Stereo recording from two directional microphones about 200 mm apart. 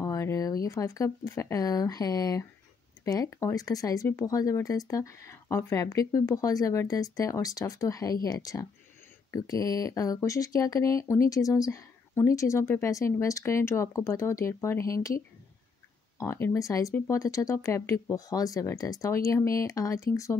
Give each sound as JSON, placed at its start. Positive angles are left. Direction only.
{"t": 0.0, "sound": "speech", "side_deg": 15}
{"t": 16.2, "sound": "speech", "side_deg": 15}